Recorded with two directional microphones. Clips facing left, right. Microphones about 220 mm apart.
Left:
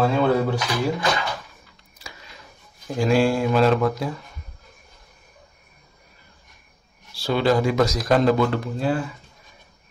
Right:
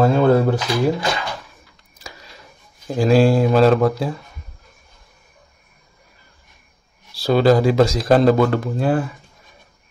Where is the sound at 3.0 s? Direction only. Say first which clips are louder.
Right 5 dB; 35° right (ahead or behind).